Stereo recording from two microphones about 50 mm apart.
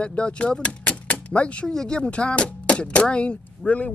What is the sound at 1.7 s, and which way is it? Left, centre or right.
Speech, centre.